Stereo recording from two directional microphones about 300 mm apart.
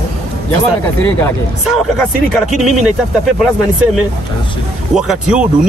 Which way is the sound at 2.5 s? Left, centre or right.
Right.